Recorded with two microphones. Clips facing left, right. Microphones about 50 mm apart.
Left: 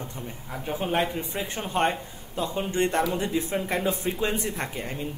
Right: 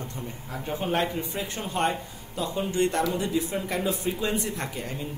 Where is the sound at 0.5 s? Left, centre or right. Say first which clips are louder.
Even; centre.